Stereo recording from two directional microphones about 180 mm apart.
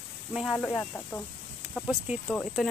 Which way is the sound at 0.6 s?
10° left (ahead or behind).